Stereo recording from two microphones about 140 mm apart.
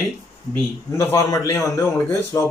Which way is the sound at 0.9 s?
20° left (ahead or behind).